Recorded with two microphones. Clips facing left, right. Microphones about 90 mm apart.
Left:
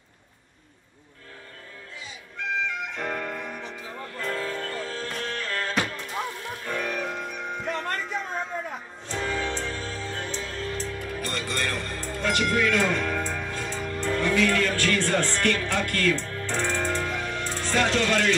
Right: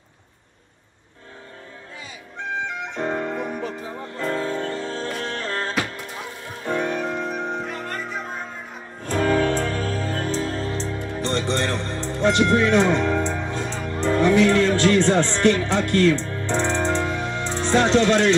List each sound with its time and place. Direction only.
2.3 s music: 25° right (ahead or behind)
9.0 s music: 50° right (ahead or behind); by 18.3 s 20° right (ahead or behind)